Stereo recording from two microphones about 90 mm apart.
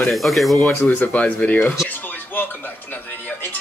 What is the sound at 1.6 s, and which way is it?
Music, 25° left (ahead or behind).